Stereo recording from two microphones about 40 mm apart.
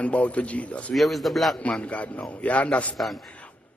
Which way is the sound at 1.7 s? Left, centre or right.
Left.